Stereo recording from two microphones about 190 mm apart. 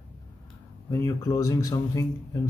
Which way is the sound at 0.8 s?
15° left (ahead or behind).